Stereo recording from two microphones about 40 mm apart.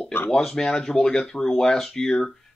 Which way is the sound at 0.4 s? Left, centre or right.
Centre.